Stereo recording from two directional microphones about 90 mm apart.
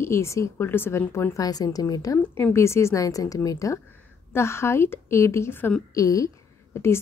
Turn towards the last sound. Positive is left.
turn(degrees=30)  # may be behind; listen again after turning